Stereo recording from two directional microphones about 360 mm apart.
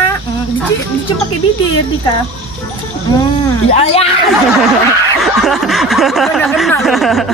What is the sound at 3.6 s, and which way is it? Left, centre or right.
Speech, centre.